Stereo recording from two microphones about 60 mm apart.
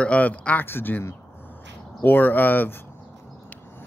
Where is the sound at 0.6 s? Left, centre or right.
Left.